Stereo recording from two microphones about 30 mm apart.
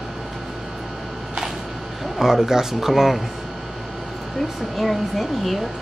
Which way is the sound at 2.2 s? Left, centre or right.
Centre.